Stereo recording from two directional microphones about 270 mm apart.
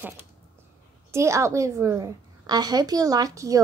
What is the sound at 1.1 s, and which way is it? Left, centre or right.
A woman's voice, centre.